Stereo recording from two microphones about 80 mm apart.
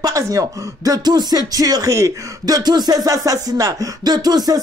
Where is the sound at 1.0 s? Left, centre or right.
Right.